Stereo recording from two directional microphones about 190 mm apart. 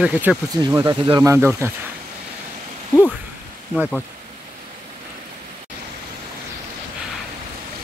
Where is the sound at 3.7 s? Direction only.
Centre (ahead or behind).